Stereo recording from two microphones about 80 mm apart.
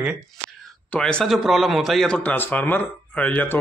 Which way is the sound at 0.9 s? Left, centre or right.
Centre.